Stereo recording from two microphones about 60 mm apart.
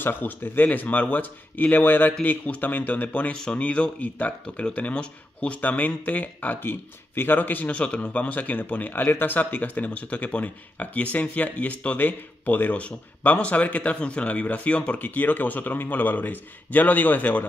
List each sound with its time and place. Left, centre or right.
0.0 s speech: left
3.3 s speech: centre; by 17.5 s left